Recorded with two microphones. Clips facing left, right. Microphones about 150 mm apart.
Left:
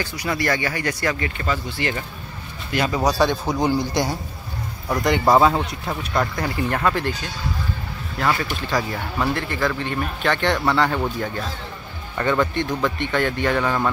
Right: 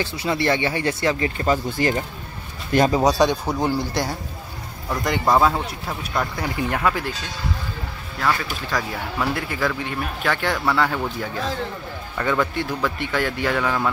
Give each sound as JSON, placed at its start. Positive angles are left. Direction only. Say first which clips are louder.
{"t": 0.0, "sound": "speech", "louder": "right 2 dB", "side_deg": -25}
{"t": 1.7, "sound": "speech", "louder": "right 4 dB", "side_deg": -40}
{"t": 3.0, "sound": "speech", "louder": "right 2 dB", "side_deg": -15}
{"t": 3.5, "sound": "speech", "louder": "left 2 dB", "side_deg": -5}
{"t": 8.2, "sound": "speech", "louder": "left 1 dB", "side_deg": 10}
{"t": 9.3, "sound": "speech", "louder": "left 1 dB", "side_deg": -5}
{"t": 12.2, "sound": "speech", "louder": "left 2 dB", "side_deg": 0}
{"t": 13.6, "sound": "speech", "louder": "left 1 dB", "side_deg": 5}